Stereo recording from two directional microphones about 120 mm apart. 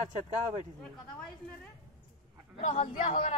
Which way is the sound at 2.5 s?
70° left (ahead or behind).